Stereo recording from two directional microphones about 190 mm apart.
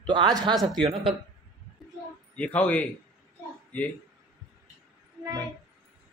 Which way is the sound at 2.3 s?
5° left (ahead or behind).